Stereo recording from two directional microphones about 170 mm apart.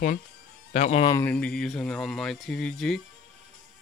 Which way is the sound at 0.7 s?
40° left (ahead or behind).